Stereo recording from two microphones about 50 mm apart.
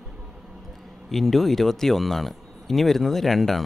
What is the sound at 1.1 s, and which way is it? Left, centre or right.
Speech, centre.